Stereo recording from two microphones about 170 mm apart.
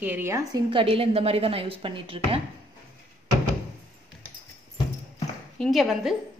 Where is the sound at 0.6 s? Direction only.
30° right (ahead or behind).